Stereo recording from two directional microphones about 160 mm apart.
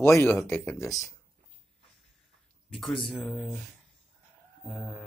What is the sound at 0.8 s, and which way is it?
Speech, 20° left (ahead or behind).